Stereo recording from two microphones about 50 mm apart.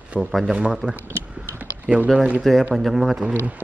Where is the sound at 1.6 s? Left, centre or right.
Right.